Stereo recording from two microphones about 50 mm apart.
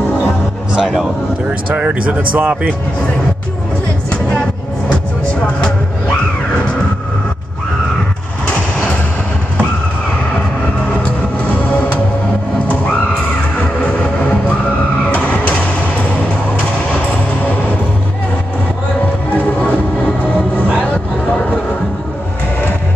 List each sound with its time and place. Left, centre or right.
0.7 s speech: centre
1.9 s speech: right
15.1 s vehicle: left